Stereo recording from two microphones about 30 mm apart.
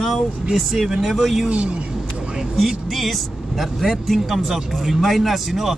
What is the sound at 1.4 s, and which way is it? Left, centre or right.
Speech, right.